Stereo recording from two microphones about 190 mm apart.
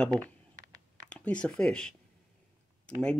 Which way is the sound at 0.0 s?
5° left (ahead or behind).